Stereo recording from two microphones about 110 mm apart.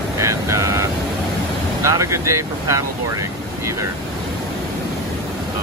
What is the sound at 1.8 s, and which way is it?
Speech, 30° right (ahead or behind).